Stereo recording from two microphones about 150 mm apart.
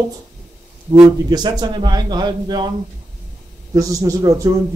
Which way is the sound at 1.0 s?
25° right (ahead or behind).